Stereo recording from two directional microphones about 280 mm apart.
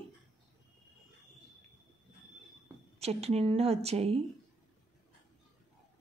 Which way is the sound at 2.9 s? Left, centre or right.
Right.